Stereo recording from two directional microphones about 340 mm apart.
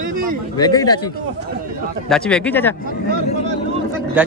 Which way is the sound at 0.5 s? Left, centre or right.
Centre.